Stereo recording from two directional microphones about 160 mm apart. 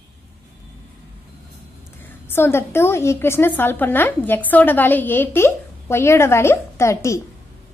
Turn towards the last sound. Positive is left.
turn(degrees=20)  # may be behind; listen again after turning